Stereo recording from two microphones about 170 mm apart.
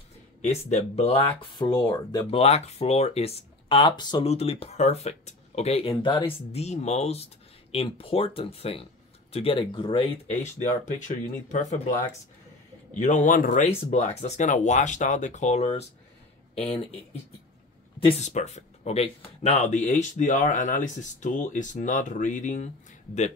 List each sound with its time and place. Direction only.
0.4 s speech: 40° left (ahead or behind); by 2.2 s 20° left (ahead or behind)
2.3 s speech: 40° left (ahead or behind)
10.4 s speech: 45° left (ahead or behind)